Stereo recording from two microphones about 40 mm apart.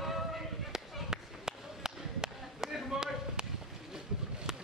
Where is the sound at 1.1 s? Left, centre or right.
Centre.